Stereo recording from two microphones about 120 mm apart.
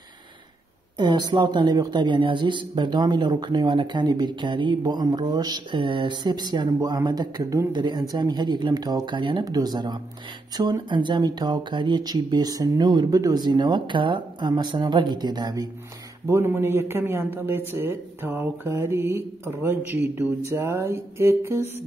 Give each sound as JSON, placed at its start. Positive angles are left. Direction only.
{"t": 0.9, "sound": "a woman's voice", "side_deg": -40}
{"t": 16.3, "sound": "speech", "side_deg": -20}